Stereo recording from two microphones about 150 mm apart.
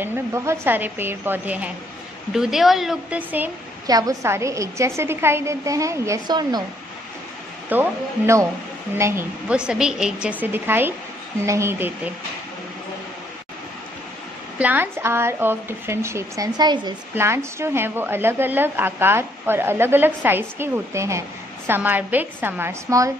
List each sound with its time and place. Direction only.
0.0 s a woman's voice: 15° right (ahead or behind)
3.8 s a woman's voice: 25° right (ahead or behind)
7.7 s a woman's voice: 15° right (ahead or behind)
9.5 s a woman's voice: 5° right (ahead or behind)
14.6 s a woman's voice: 10° right (ahead or behind); by 16.9 s 30° right (ahead or behind)
17.1 s a woman's voice: 15° right (ahead or behind)